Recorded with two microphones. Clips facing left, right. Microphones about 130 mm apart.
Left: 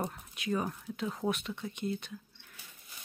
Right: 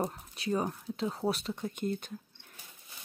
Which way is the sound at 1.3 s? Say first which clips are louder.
Right 1 dB; 35° right (ahead or behind).